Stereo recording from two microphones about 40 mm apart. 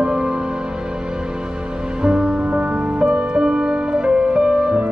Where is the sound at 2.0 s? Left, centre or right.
Right.